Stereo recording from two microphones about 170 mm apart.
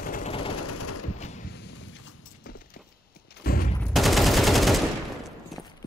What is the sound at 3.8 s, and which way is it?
Machine gun, 5° left (ahead or behind).